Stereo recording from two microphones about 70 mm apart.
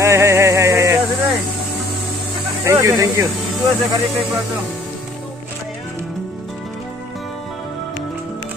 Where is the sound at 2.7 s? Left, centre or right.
Right.